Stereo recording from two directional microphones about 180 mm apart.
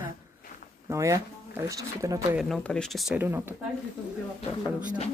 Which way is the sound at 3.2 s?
10° right (ahead or behind).